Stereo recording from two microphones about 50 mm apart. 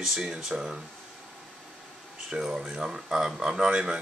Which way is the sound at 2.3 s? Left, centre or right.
Centre.